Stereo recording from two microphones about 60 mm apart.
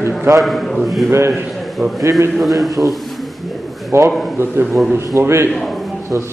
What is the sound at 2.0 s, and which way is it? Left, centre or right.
Speech, right.